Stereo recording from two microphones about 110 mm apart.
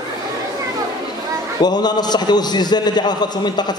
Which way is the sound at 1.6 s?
40° left (ahead or behind).